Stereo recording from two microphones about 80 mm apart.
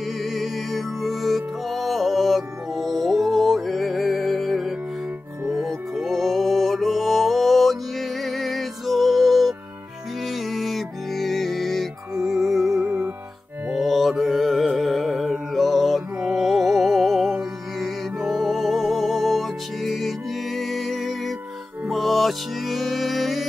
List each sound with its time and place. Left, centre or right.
0.2 s music: centre
12.8 s music: right
13.7 s music: centre